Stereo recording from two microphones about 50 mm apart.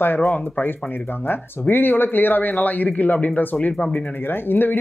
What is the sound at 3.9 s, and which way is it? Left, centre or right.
Speech, left.